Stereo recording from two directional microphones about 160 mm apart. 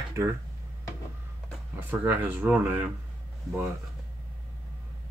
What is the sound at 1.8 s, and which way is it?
Speech, 10° right (ahead or behind).